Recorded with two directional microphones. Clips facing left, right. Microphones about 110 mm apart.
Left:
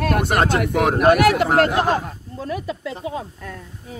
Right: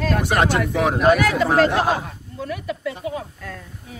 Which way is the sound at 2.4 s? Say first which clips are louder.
Even; 30° left (ahead or behind).